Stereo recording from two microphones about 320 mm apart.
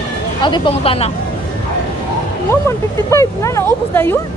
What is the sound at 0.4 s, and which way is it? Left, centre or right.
Speech, centre.